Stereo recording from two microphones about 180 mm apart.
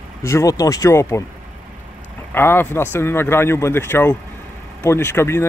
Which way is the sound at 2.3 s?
10° left (ahead or behind).